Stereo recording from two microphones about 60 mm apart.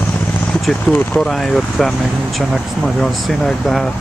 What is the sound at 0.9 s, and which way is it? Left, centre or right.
Speech, left.